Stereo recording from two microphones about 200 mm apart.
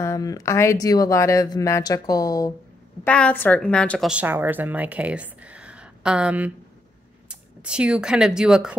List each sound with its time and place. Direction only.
0.0 s speech: 15° left (ahead or behind)
3.0 s a woman's voice: 5° left (ahead or behind)
4.1 s speech: 10° right (ahead or behind)